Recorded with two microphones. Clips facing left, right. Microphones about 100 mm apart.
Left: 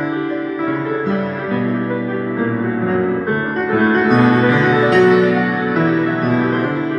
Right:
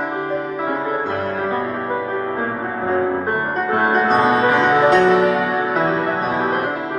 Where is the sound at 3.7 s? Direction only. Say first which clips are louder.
Left 3 dB; 25° right (ahead or behind).